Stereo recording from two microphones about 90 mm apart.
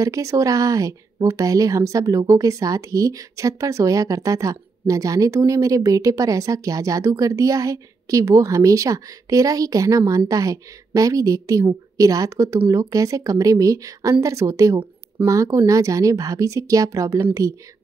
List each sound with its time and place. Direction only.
0.0 s speech: 35° right (ahead or behind)